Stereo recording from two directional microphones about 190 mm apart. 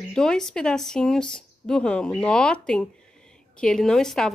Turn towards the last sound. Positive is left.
turn(degrees=5)  # may be behind; listen again after turning